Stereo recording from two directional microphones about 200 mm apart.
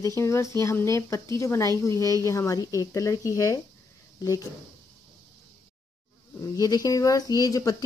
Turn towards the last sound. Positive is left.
turn(degrees=15)  # may be behind; listen again after turning